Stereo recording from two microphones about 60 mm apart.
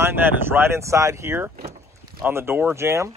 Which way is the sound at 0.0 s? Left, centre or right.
Right.